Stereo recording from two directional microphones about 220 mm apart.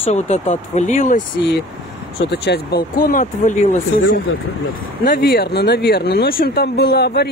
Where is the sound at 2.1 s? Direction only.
50° left (ahead or behind).